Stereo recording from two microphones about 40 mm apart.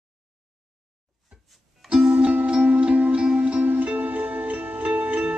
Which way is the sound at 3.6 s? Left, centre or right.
Right.